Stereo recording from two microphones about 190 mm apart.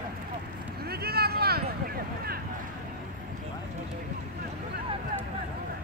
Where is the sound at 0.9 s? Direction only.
55° right (ahead or behind).